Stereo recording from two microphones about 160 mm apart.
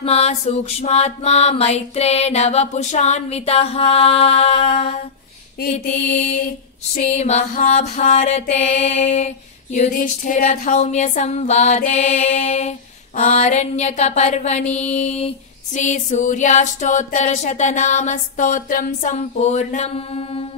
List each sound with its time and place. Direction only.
0.0 s music: 40° left (ahead or behind)
5.6 s mantra: 75° left (ahead or behind)
7.0 s music: 45° left (ahead or behind)